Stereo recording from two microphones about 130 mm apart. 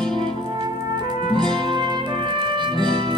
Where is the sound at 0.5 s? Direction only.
35° right (ahead or behind).